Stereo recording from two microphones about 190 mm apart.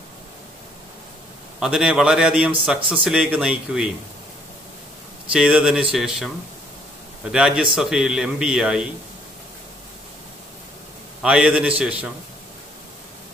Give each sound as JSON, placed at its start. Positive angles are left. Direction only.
{"t": 1.6, "sound": "a man's voice", "side_deg": -5}
{"t": 5.3, "sound": "a man's voice", "side_deg": -5}
{"t": 11.2, "sound": "a man's voice", "side_deg": -5}